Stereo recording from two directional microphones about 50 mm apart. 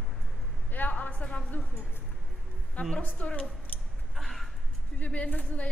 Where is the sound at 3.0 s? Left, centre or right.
Left.